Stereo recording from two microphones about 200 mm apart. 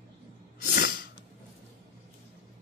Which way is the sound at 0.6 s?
45° left (ahead or behind).